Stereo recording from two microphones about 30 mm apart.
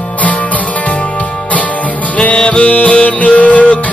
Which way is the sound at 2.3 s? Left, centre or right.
Left.